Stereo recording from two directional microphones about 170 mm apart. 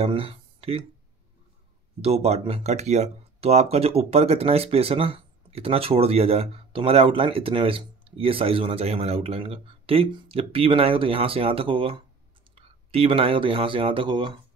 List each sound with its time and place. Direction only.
0.0 s speech: 35° right (ahead or behind)
2.0 s speech: 35° right (ahead or behind)